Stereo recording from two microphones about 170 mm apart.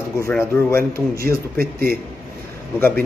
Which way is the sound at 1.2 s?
60° right (ahead or behind).